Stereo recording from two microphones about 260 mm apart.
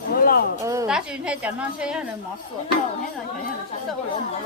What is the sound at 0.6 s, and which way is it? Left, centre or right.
A woman's voice, centre.